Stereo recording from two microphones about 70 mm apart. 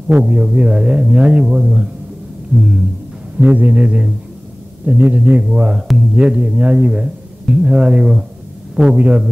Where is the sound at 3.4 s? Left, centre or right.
Right.